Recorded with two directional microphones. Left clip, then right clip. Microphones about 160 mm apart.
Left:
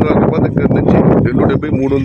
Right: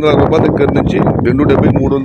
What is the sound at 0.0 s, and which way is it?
Speech, 25° right (ahead or behind).